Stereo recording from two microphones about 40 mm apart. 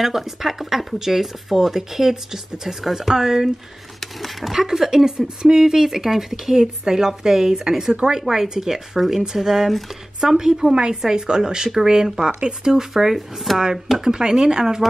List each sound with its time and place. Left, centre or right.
0.0 s speech: centre
4.0 s speech: centre